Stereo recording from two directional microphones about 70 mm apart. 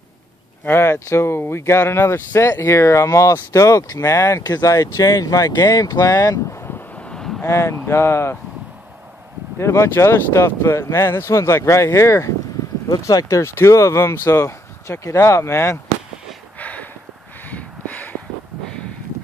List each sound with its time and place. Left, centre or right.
0.7 s speech: left
4.5 s speech: left
6.5 s vehicle: left
7.0 s a sound: centre
7.4 s speech: left
9.6 s speech: left
13.4 s speech: left
16.5 s a sound: left